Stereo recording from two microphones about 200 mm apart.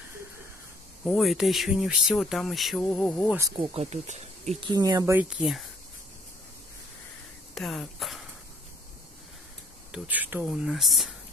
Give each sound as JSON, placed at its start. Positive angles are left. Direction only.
{"t": 1.0, "sound": "speech", "side_deg": 0}
{"t": 3.3, "sound": "speech", "side_deg": -15}
{"t": 3.5, "sound": "speech", "side_deg": -30}
{"t": 7.5, "sound": "a sound", "side_deg": 0}
{"t": 9.9, "sound": "speech", "side_deg": -10}